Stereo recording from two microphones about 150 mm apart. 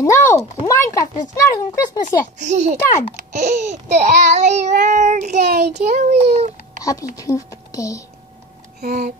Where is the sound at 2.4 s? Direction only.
55° right (ahead or behind).